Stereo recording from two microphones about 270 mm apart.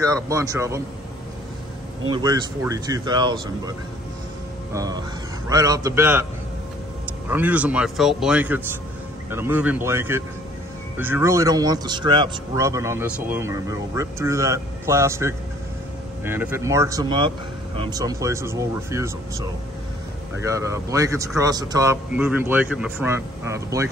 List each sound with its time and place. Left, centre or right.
0.0 s speech: centre
2.0 s speech: centre
4.7 s speech: centre
7.2 s speech: centre
20.4 s speech: centre